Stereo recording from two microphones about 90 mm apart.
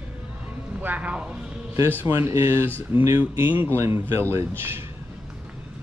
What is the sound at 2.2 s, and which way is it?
Speech, 30° right (ahead or behind).